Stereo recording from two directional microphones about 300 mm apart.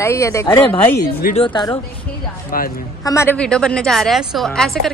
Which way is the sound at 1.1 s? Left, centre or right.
Left.